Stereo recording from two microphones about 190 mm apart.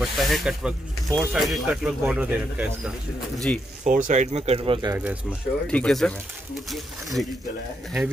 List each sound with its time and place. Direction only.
0.0 s speech: centre (ahead or behind)
3.5 s speech: 5° left (ahead or behind)
3.8 s speech: 45° right (ahead or behind)
5.7 s speech: 5° left (ahead or behind)